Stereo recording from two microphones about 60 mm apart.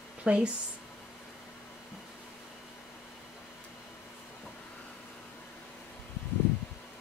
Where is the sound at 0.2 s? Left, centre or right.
Centre.